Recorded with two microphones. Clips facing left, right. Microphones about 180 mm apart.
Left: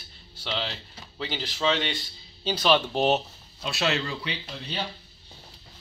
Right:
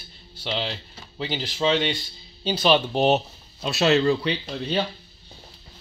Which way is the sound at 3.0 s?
5° right (ahead or behind).